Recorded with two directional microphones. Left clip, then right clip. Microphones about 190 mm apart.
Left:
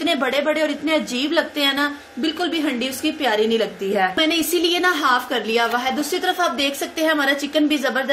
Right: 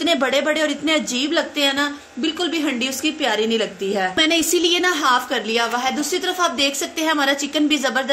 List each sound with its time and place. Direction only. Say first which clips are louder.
0.0 s a woman's voice: right 1 dB; 10° right (ahead or behind)